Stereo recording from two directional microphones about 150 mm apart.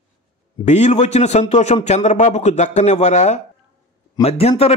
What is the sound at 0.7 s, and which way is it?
A man's voice, 50° left (ahead or behind).